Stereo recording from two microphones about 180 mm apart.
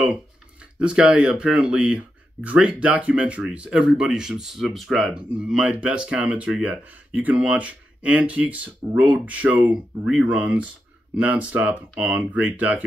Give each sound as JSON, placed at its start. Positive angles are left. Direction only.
{"t": 0.7, "sound": "speech", "side_deg": -5}